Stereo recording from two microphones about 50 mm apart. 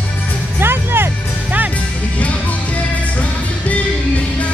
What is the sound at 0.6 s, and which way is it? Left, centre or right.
Music, right.